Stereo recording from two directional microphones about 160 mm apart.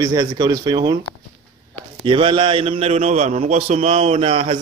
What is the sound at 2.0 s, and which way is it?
A man's voice, 30° right (ahead or behind).